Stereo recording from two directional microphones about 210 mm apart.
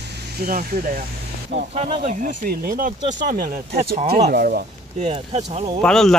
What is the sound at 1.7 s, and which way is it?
Speech, 30° right (ahead or behind).